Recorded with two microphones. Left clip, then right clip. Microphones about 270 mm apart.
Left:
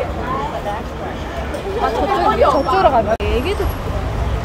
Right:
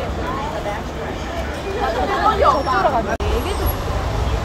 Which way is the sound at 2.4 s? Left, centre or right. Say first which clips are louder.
Left 2 dB; left.